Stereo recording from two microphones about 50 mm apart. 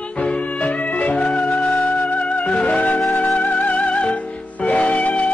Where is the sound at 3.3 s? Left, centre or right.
Left.